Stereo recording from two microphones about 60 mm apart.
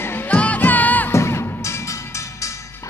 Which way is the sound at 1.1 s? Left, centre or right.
Left.